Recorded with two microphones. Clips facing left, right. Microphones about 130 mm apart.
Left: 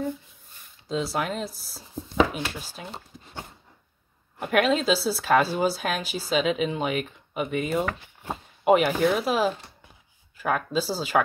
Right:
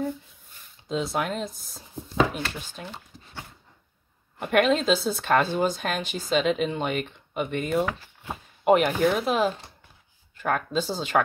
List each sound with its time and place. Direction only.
0.8 s a woman's voice: centre (ahead or behind)
4.4 s a woman's voice: centre (ahead or behind)